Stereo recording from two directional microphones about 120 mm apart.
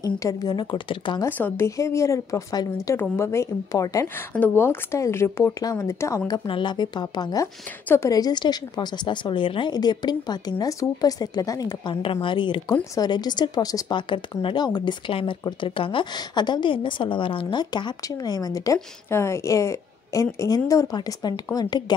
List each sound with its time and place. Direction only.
0.0 s speech: 30° left (ahead or behind)
1.2 s speech: 20° left (ahead or behind)
4.3 s speech: 15° left (ahead or behind); by 11.9 s 30° left (ahead or behind)
11.9 s speech: 50° left (ahead or behind)